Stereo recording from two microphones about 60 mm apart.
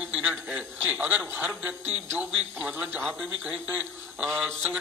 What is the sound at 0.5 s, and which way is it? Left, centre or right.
A man's voice, centre.